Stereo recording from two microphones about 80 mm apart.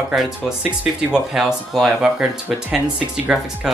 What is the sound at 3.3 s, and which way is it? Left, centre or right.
Speech, centre.